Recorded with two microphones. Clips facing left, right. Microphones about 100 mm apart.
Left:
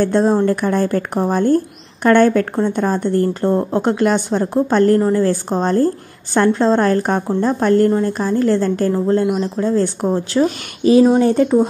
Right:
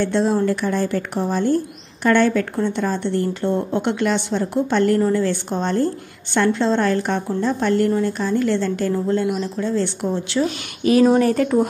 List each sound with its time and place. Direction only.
0.0 s a woman's voice: 45° left (ahead or behind)
10.8 s speech: 30° left (ahead or behind)